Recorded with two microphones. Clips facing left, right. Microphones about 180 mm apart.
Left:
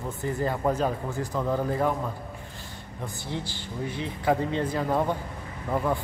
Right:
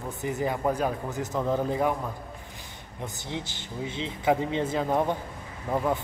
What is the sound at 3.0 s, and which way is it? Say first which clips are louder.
Speech: left 1 dB; 20° right (ahead or behind).